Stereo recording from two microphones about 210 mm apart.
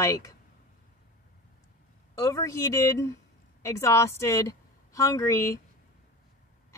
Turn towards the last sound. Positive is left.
turn(degrees=15)  # may be behind; listen again after turning